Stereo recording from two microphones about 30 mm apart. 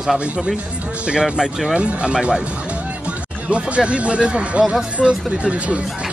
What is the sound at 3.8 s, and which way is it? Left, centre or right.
Speech, right.